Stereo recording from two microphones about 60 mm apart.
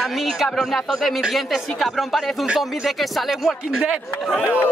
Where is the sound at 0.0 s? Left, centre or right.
Centre.